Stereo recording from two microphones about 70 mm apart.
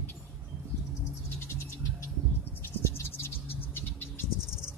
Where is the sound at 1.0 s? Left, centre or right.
Left.